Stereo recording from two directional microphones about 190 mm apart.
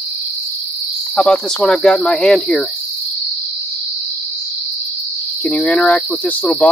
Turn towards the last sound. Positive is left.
turn(degrees=5)  # may be behind; listen again after turning